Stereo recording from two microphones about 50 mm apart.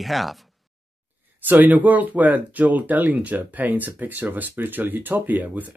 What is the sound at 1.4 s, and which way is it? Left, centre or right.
Speech, right.